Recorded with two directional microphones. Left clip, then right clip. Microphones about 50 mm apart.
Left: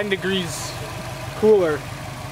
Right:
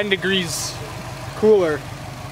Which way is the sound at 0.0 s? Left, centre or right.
Right.